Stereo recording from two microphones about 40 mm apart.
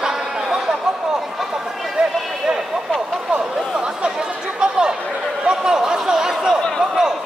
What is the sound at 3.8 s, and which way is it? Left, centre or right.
Chatter, right.